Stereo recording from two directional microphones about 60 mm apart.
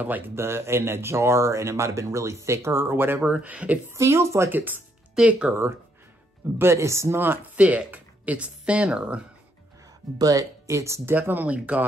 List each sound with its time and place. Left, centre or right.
0.0 s speech: right
0.4 s speech: right
3.3 s speech: right
3.9 s speech: right
4.5 s speech: right
5.5 s speech: right
7.2 s speech: right; by 9.2 s centre
10.7 s speech: right
11.1 s speech: right
11.4 s speech: right